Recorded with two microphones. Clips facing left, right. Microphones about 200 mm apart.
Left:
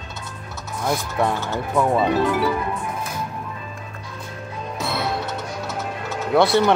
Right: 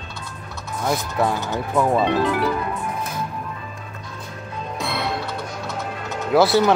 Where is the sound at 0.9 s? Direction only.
Centre (ahead or behind).